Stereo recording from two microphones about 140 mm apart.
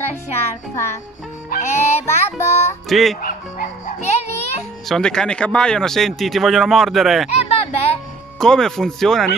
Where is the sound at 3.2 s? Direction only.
90° left.